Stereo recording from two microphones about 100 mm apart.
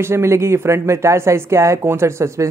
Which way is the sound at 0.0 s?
25° right (ahead or behind).